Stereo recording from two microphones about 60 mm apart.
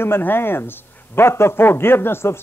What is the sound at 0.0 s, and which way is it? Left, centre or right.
A man's voice, left.